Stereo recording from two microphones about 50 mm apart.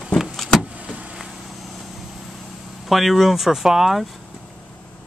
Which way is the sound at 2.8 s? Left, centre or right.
Centre.